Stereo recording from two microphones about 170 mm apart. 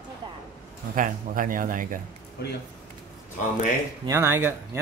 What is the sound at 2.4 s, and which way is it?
Speech, 70° left (ahead or behind).